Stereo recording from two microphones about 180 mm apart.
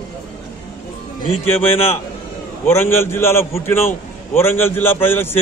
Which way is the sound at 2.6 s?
15° left (ahead or behind).